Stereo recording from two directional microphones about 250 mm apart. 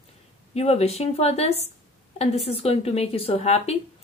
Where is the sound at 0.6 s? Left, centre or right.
Left.